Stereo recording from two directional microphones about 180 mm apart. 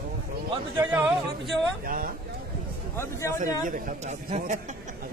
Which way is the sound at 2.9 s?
15° left (ahead or behind).